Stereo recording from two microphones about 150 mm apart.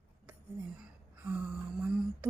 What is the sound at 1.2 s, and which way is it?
Speech, 10° right (ahead or behind).